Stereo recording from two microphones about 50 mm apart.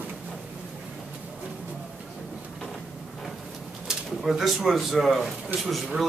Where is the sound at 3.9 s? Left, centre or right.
Centre.